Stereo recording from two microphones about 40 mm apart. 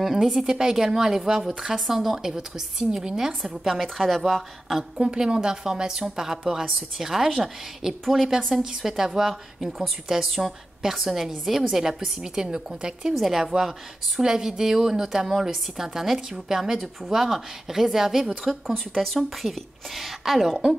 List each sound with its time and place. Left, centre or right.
0.0 s a woman's voice: centre
3.8 s a woman's voice: centre
4.6 s a woman's voice: centre
5.0 s a woman's voice: right
13.1 s a woman's voice: centre